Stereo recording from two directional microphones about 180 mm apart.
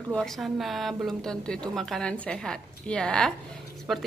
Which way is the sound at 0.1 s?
5° left (ahead or behind).